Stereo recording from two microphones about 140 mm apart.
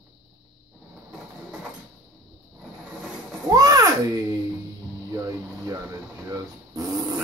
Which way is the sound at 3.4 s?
25° right (ahead or behind).